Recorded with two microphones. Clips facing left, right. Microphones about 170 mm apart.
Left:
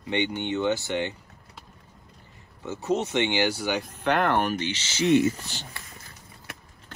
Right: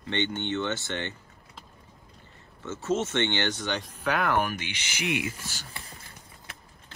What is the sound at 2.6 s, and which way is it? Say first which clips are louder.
Speech: left 2 dB; 15° left (ahead or behind).